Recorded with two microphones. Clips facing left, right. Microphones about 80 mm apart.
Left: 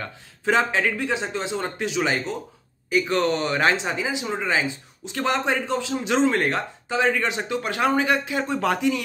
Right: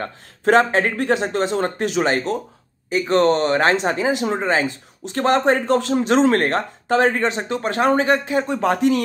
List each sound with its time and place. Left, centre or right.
0.0 s a man's voice: right
7.2 s speech: right